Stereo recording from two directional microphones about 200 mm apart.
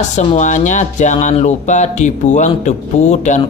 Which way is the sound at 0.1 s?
35° left (ahead or behind).